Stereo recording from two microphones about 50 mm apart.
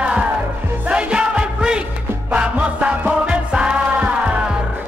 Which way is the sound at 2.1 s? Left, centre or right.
Right.